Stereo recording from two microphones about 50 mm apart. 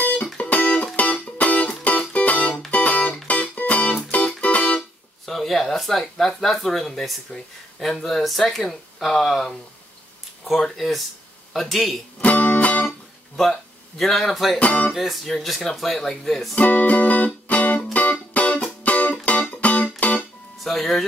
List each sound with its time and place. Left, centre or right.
0.0 s music: left
5.2 s speech: centre
10.6 s speech: centre
12.2 s music: left
13.4 s speech: centre
14.6 s speech: left
14.9 s speech: centre
16.5 s music: left
20.5 s music: centre